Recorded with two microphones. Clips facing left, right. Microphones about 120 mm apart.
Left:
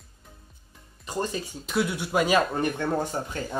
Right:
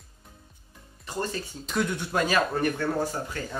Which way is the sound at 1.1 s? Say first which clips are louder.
Left 2 dB; 15° left (ahead or behind).